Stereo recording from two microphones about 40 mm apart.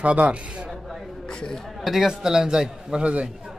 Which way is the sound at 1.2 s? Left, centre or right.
Left.